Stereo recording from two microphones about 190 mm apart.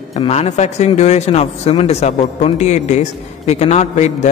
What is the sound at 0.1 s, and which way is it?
Speech, 35° left (ahead or behind).